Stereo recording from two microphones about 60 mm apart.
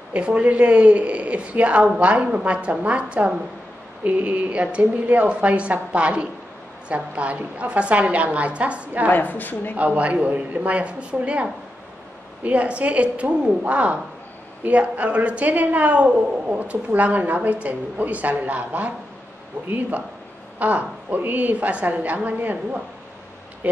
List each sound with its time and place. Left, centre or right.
0.1 s a woman's voice: centre
9.1 s a woman's voice: left
9.8 s a woman's voice: right
12.4 s a woman's voice: right
20.5 s a woman's voice: right